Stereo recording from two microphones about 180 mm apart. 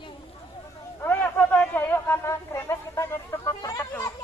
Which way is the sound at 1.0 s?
10° left (ahead or behind).